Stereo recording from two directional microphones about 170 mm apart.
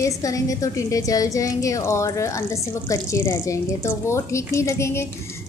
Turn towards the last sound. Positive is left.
turn(degrees=15)  # may be behind; listen again after turning